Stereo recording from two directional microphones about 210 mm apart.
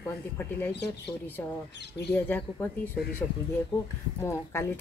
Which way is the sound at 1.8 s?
50° left (ahead or behind).